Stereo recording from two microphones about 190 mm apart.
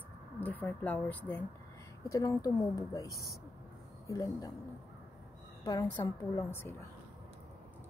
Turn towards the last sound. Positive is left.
turn(degrees=15)  # may be behind; listen again after turning